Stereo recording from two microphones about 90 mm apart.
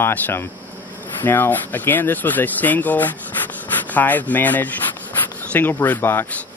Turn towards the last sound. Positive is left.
turn(degrees=25)  # may be behind; listen again after turning